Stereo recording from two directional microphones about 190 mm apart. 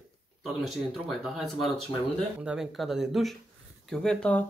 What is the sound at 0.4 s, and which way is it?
Speech, centre (ahead or behind).